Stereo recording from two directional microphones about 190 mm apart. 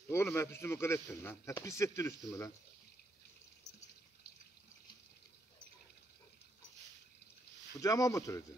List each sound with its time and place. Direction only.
0.1 s a man's voice: 15° left (ahead or behind)
7.8 s a man's voice: 15° left (ahead or behind)